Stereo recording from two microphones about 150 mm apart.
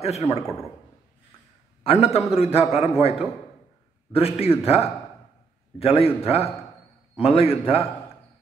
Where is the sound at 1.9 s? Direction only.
40° left (ahead or behind).